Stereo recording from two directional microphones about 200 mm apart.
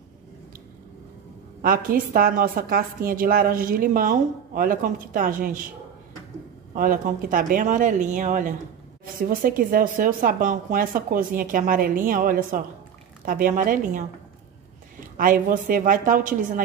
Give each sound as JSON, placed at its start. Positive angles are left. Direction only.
{"t": 1.6, "sound": "a woman's voice", "side_deg": -45}
{"t": 6.7, "sound": "a woman's voice", "side_deg": -45}
{"t": 15.1, "sound": "a woman's voice", "side_deg": -45}